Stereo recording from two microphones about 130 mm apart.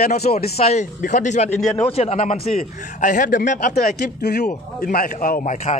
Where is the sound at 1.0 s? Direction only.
70° left (ahead or behind).